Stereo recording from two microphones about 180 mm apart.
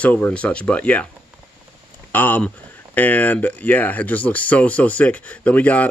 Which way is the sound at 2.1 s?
10° left (ahead or behind).